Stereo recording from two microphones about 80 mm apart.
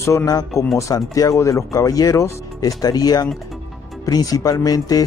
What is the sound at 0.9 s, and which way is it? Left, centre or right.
Speech, left.